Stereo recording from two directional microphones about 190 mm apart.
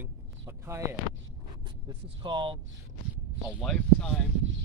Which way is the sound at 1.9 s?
25° right (ahead or behind).